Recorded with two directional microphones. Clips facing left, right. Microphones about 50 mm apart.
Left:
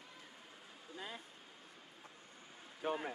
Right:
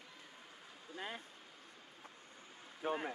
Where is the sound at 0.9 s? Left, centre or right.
Right.